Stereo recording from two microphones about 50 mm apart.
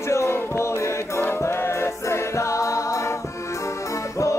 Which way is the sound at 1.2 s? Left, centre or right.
Left.